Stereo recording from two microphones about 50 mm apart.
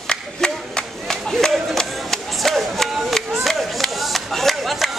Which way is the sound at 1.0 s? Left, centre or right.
Centre.